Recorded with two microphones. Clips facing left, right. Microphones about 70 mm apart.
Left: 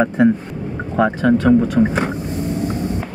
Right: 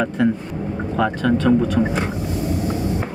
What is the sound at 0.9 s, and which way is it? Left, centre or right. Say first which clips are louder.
Speech: left 4 dB; centre.